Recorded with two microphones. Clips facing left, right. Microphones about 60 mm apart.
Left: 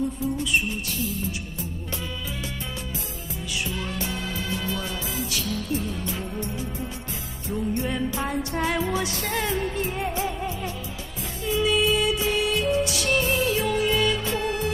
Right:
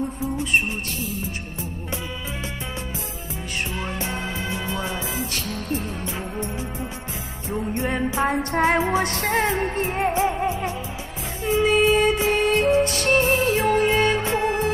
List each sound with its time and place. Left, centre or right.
0.4 s music: right
3.7 s music: right
5.3 s music: right
6.0 s music: right
11.7 s music: right